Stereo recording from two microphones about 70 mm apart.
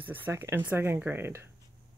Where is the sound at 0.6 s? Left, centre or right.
Right.